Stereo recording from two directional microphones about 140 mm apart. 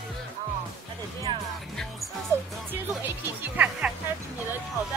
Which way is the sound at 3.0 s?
15° right (ahead or behind).